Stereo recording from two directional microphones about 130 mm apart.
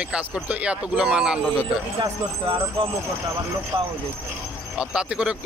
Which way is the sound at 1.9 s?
40° right (ahead or behind).